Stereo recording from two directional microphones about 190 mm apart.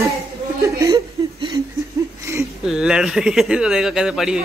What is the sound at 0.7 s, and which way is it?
Chuckle, 15° right (ahead or behind).